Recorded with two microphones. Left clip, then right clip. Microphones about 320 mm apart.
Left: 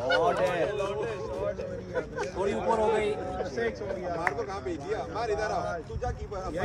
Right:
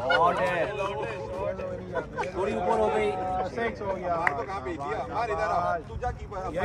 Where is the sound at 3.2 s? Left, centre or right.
Right.